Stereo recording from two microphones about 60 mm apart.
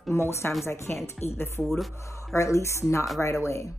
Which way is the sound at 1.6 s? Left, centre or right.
Centre.